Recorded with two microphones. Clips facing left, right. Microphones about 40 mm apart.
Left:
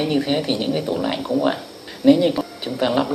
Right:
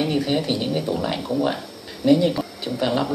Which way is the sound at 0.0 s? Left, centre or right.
Left.